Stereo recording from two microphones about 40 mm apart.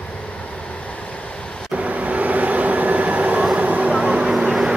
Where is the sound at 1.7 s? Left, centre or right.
Right.